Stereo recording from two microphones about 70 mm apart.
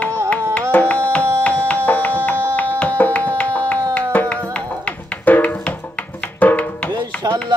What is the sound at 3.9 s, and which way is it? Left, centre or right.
Music, left.